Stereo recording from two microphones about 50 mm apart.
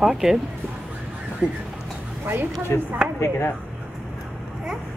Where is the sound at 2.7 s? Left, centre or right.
Left.